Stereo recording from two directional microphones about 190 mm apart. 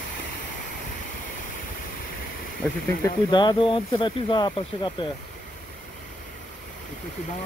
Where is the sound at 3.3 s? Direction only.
25° left (ahead or behind).